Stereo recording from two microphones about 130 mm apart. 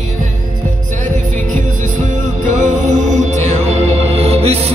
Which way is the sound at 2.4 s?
70° right (ahead or behind).